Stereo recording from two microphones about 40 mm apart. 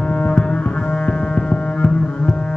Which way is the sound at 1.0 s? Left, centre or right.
Left.